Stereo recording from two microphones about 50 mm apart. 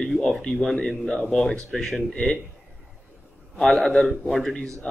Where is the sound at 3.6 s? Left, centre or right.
Centre.